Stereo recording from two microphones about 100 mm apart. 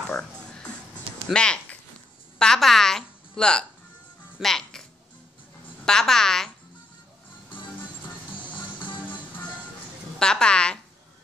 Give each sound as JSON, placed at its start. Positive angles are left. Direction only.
{"t": 0.1, "sound": "music", "side_deg": 10}
{"t": 1.3, "sound": "a woman's voice", "side_deg": 10}
{"t": 5.9, "sound": "speech", "side_deg": 5}
{"t": 8.4, "sound": "music", "side_deg": 55}
{"t": 10.1, "sound": "a woman's voice", "side_deg": 10}